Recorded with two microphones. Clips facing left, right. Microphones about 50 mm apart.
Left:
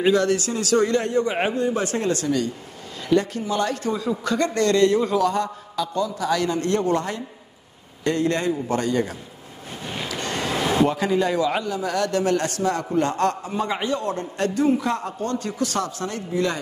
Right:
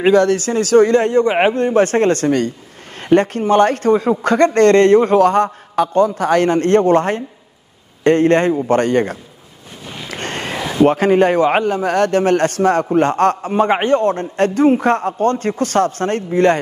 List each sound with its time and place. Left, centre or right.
0.0 s speech: right
10.0 s a sound: right
10.9 s speech: right